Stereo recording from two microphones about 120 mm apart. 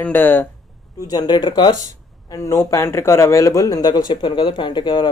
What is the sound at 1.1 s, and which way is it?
Speech, 35° left (ahead or behind).